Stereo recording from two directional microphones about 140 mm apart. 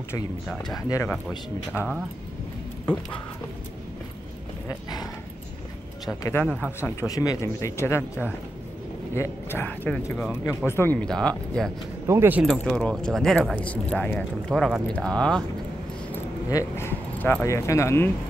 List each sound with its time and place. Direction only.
0.7 s speech: 25° left (ahead or behind)
1.8 s speech: 5° right (ahead or behind)
6.2 s speech: 15° left (ahead or behind)
12.1 s speech: 15° right (ahead or behind)
12.5 s speech: 5° left (ahead or behind)
16.4 s speech: 20° left (ahead or behind)